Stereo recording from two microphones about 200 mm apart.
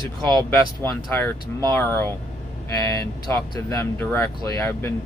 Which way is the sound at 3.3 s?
10° left (ahead or behind).